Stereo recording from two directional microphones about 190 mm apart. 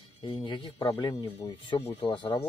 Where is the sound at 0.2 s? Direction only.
25° left (ahead or behind).